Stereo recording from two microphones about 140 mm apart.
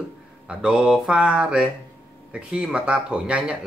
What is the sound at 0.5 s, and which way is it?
Speech, 5° right (ahead or behind).